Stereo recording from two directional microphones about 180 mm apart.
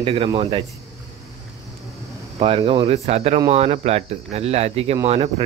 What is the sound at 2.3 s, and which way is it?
Speech, 30° right (ahead or behind).